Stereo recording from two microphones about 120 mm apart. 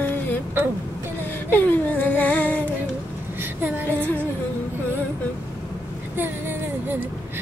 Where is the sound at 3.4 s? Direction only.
15° right (ahead or behind).